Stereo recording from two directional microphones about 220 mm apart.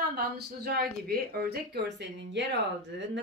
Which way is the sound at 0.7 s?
45° right (ahead or behind).